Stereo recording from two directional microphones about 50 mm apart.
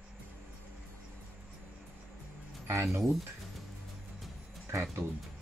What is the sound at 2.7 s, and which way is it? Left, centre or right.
Speech, right.